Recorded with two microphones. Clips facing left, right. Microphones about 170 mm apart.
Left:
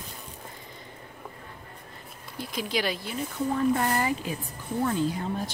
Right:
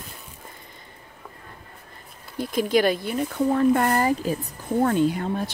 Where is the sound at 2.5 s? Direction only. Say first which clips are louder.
Right 9 dB; 50° right (ahead or behind).